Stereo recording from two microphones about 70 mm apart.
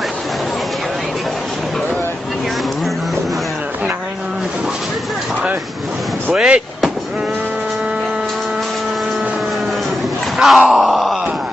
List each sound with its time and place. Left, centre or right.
6.3 s speech: centre
10.3 s a sound: centre
10.7 s groan: centre